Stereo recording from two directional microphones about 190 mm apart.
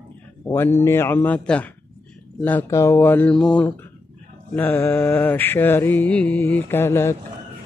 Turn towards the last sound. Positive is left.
turn(degrees=15)  # may be behind; listen again after turning